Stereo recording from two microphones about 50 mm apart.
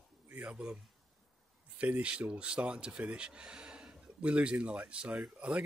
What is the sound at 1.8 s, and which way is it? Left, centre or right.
Speech, right.